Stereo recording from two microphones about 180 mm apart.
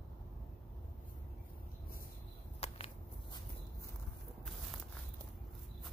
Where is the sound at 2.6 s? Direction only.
35° left (ahead or behind).